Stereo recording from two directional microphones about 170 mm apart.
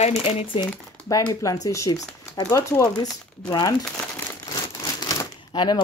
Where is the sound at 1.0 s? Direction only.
20° left (ahead or behind).